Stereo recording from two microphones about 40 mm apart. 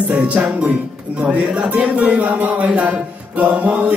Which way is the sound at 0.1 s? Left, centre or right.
Right.